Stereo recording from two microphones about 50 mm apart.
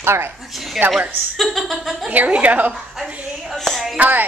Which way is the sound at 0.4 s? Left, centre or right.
Centre.